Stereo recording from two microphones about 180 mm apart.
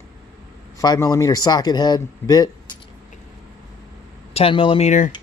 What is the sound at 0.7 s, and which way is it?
Speech, 20° left (ahead or behind).